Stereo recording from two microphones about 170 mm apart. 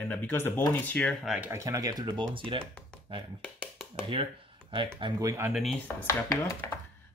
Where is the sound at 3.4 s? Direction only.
5° left (ahead or behind).